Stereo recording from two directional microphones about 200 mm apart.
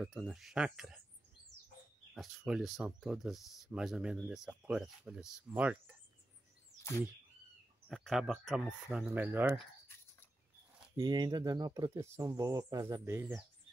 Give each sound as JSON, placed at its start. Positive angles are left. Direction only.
{"t": 0.0, "sound": "speech", "side_deg": 0}
{"t": 2.1, "sound": "speech", "side_deg": 0}
{"t": 6.8, "sound": "a sound", "side_deg": 15}
{"t": 7.9, "sound": "speech", "side_deg": 0}
{"t": 11.0, "sound": "speech", "side_deg": -20}